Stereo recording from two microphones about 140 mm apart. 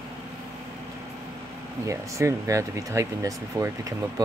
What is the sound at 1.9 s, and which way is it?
Speech, 20° right (ahead or behind).